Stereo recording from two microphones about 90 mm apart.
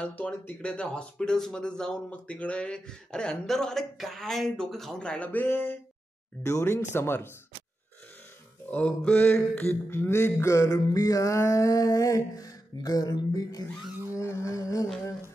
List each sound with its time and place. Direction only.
0.0 s speech: 15° left (ahead or behind)
8.6 s speech: 15° left (ahead or behind)
10.4 s mantra: 35° left (ahead or behind)